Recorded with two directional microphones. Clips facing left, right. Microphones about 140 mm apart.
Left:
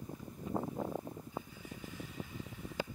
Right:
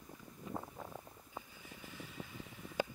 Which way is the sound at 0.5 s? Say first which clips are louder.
Left 9 dB; 40° left (ahead or behind).